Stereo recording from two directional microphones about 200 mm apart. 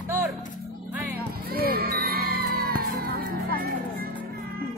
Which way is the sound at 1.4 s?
50° right (ahead or behind).